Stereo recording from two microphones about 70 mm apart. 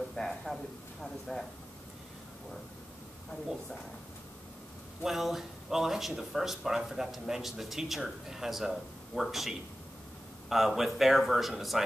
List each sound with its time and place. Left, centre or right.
0.1 s speech: centre
5.0 s speech: centre